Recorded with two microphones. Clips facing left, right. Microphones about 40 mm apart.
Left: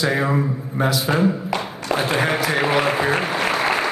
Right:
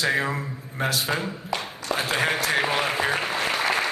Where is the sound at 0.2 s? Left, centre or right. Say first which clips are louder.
Left 7 dB; centre.